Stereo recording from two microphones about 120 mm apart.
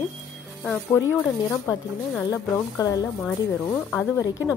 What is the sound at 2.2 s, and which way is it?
Speech, 30° left (ahead or behind).